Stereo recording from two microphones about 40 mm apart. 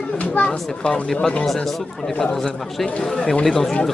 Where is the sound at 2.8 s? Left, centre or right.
Centre.